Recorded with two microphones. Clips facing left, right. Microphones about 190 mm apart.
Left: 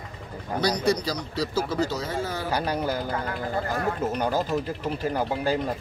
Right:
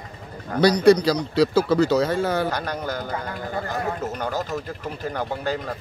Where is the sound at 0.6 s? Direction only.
65° right (ahead or behind).